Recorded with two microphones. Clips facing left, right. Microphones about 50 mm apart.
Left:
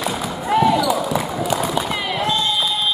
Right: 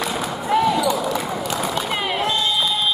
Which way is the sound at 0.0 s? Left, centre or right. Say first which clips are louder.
Even; centre.